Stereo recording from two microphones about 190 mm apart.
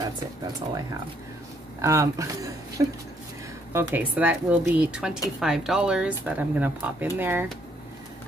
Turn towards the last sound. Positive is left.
turn(degrees=-10)  # may be behind; listen again after turning